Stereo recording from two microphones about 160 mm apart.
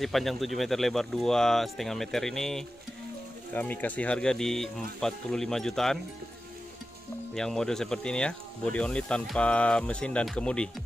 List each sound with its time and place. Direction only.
0.0 s speech: centre (ahead or behind)
7.3 s speech: 5° left (ahead or behind)